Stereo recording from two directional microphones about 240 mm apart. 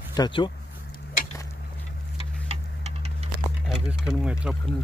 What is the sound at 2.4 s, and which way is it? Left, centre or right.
Tick-tock, right.